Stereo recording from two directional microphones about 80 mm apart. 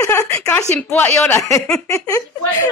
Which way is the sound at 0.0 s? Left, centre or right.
Left.